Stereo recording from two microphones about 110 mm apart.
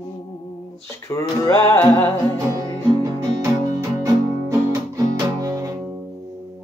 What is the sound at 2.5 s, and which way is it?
Music, 35° right (ahead or behind).